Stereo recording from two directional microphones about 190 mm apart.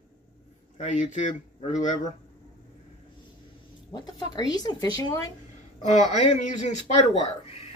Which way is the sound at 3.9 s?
20° left (ahead or behind).